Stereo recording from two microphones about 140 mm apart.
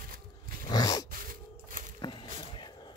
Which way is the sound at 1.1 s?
85° right.